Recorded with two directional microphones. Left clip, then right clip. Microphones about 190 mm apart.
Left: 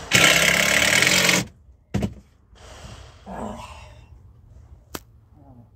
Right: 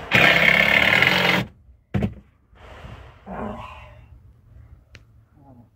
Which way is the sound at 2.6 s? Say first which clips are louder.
Right 1 dB; 5° left (ahead or behind).